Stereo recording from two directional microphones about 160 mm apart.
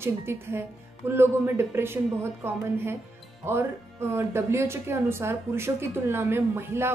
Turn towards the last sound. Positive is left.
turn(degrees=-15)  # may be behind; listen again after turning